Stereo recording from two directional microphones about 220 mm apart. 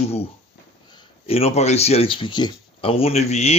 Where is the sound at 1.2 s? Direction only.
25° left (ahead or behind).